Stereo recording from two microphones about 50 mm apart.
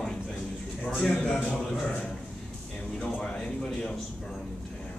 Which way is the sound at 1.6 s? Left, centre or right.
Centre.